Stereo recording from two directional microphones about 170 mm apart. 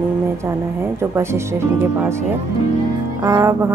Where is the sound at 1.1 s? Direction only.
15° right (ahead or behind).